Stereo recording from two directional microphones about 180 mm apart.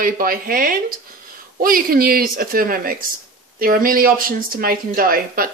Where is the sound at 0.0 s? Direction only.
55° right (ahead or behind).